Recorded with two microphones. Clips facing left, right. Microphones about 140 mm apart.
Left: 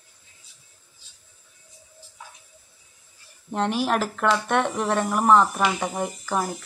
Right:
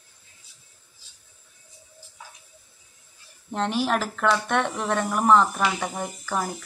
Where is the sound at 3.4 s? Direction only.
5° left (ahead or behind).